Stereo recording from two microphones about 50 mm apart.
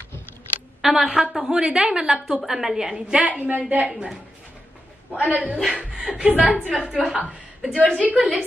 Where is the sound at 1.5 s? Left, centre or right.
Centre.